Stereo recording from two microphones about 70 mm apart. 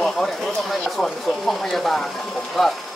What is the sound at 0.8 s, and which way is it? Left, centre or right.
Speech, centre.